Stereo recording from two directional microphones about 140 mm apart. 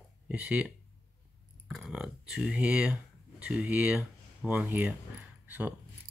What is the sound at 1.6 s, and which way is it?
Speech, 5° right (ahead or behind).